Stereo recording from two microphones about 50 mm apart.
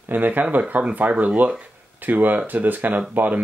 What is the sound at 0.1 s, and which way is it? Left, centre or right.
Speech, right.